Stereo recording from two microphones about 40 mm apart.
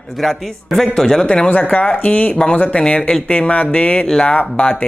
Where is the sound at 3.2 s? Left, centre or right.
Left.